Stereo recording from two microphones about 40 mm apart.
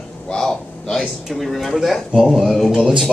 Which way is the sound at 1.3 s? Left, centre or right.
Centre.